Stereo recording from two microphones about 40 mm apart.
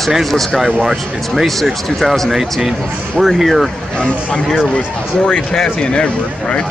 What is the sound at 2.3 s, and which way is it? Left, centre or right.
Speech, centre.